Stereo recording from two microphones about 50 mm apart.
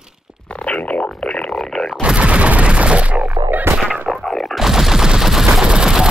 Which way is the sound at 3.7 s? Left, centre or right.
Centre.